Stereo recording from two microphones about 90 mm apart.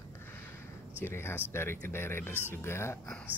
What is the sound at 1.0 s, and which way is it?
Speech, 25° left (ahead or behind).